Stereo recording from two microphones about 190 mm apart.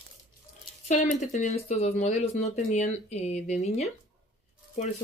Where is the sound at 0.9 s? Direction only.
40° left (ahead or behind).